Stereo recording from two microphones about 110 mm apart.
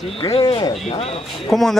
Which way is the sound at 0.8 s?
65° left (ahead or behind).